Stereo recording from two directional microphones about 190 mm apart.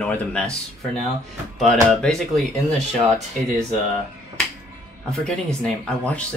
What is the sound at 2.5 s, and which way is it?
Speech, 35° right (ahead or behind).